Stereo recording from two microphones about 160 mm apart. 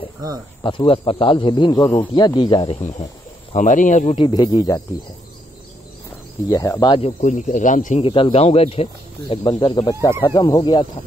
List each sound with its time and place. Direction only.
0.7 s speech: 30° left (ahead or behind)
3.5 s speech: 50° left (ahead or behind)
4.2 s speech: 25° left (ahead or behind)
6.5 s speech: 20° left (ahead or behind)
7.2 s speech: 50° left (ahead or behind)
8.0 s speech: 35° left (ahead or behind)